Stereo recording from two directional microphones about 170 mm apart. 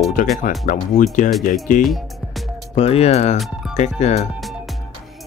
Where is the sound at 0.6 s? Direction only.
50° left (ahead or behind).